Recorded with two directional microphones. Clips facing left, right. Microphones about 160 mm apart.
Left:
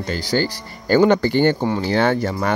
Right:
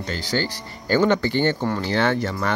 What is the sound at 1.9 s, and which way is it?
Speech, 45° left (ahead or behind).